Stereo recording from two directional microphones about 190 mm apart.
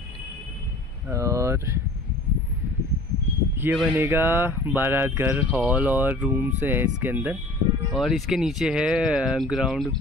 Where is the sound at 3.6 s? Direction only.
10° right (ahead or behind).